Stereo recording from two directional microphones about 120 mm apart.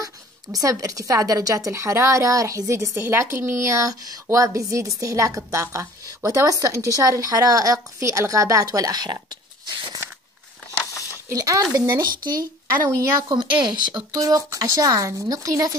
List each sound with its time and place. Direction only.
0.0 s a woman's voice: 30° right (ahead or behind)
10.8 s a sound: 25° left (ahead or behind)
11.2 s a woman's voice: 30° right (ahead or behind)